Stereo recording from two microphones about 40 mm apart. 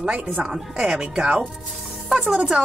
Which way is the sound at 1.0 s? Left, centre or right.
Right.